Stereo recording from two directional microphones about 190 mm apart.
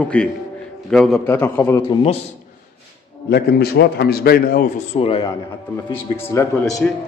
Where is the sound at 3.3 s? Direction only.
55° left (ahead or behind).